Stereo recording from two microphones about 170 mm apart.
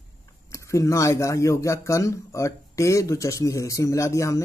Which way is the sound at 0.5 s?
20° left (ahead or behind).